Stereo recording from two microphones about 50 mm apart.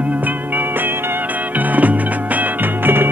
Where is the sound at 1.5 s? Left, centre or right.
Right.